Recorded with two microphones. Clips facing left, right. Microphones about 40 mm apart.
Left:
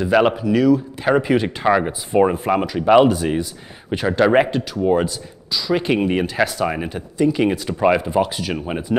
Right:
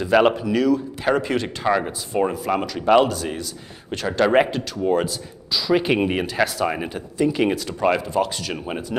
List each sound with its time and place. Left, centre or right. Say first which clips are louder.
0.0 s speech: left 1 dB; centre
7.6 s speech: left 4 dB; centre